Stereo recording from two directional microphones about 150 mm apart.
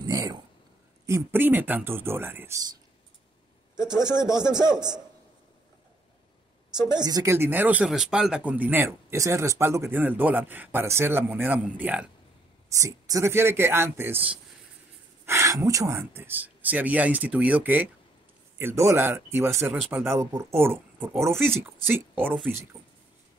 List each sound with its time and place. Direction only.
0.0 s a sound: 25° right (ahead or behind)
1.0 s speech: 15° right (ahead or behind)
3.7 s a man's voice: 30° right (ahead or behind)
6.9 s a man's voice: 25° right (ahead or behind)
7.3 s speech: 15° right (ahead or behind)
12.6 s speech: 20° right (ahead or behind)